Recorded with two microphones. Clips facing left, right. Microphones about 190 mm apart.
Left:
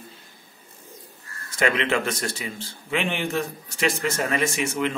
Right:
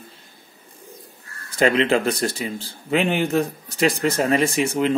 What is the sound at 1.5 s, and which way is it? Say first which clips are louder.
Speech: right 5 dB; 35° right (ahead or behind).